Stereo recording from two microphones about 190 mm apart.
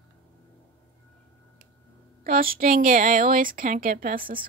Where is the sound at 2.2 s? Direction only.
50° right (ahead or behind).